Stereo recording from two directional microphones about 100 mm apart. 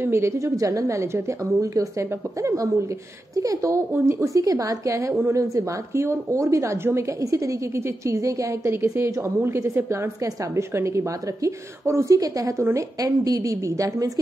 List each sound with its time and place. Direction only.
0.0 s a woman's voice: 25° right (ahead or behind)